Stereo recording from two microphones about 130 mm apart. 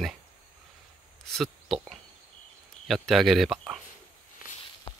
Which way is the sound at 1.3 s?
Centre (ahead or behind).